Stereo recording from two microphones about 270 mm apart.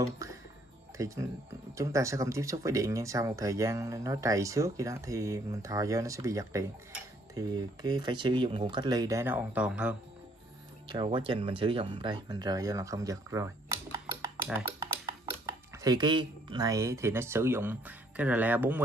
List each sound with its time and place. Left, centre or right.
0.0 s speech: centre
10.9 s speech: centre
13.9 s a sound: centre
15.4 s speech: centre